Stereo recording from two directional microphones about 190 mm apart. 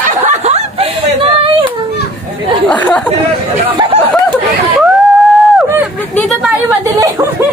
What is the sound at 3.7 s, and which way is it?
Chatter, 25° right (ahead or behind).